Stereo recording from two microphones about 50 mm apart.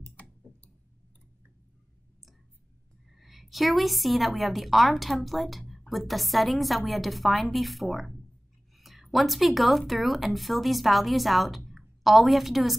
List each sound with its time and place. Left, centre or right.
0.1 s clicking: left
3.1 s a woman's voice: centre